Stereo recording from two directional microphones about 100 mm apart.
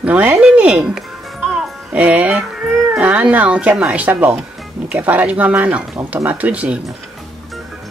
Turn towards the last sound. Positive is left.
turn(degrees=-15)  # may be behind; listen again after turning